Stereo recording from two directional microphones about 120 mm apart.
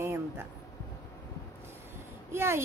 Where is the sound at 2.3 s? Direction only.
20° right (ahead or behind).